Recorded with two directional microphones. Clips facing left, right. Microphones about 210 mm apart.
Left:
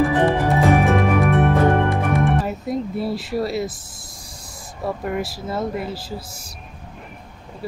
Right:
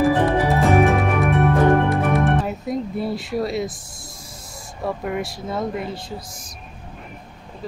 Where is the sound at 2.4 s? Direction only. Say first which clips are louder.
Left 1 dB; centre (ahead or behind).